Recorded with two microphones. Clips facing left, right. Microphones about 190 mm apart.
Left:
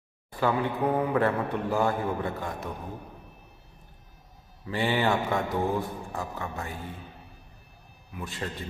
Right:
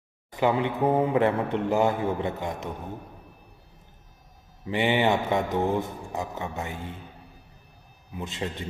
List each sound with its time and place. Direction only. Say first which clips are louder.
0.3 s a man's voice: right 3 dB; 20° right (ahead or behind)
4.6 s a man's voice: right 3 dB; 20° right (ahead or behind)
8.1 s a man's voice: right 3 dB; 20° right (ahead or behind)